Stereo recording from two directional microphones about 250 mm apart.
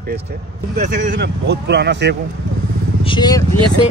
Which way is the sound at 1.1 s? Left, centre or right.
Right.